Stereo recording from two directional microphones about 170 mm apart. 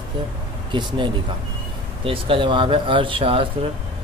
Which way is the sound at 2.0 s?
30° right (ahead or behind).